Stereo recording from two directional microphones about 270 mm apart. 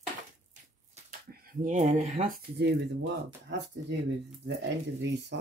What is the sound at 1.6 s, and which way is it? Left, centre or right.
Speech, right.